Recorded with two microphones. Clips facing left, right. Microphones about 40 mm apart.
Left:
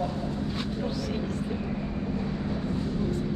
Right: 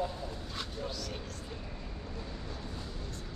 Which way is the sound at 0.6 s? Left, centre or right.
Left.